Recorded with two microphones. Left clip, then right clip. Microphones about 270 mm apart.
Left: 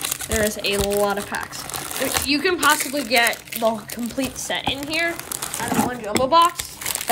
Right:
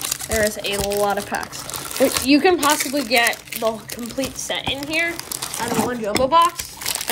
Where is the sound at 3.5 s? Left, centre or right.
Left.